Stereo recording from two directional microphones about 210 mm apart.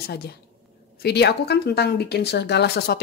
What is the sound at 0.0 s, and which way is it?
Speech, 50° left (ahead or behind).